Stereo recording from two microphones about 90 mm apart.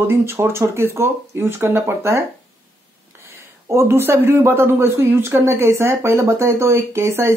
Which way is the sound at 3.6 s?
30° right (ahead or behind).